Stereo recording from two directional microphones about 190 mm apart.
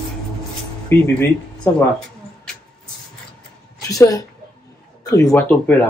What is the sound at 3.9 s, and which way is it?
Speech, 20° left (ahead or behind).